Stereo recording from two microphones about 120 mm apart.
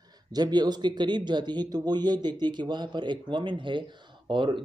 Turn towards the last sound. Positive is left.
turn(degrees=-40)  # may be behind; listen again after turning